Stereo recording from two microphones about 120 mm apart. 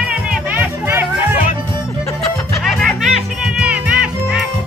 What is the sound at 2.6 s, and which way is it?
Music, centre (ahead or behind).